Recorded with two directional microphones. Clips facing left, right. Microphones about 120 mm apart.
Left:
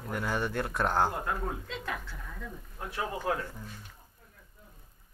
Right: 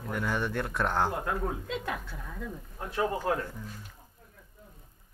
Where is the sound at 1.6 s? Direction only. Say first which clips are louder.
Right 3 dB; 15° right (ahead or behind).